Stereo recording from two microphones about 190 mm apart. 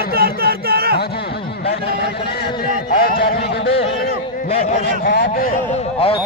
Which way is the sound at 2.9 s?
55° left (ahead or behind).